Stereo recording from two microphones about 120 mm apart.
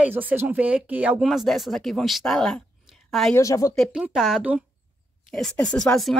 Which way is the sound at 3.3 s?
25° left (ahead or behind).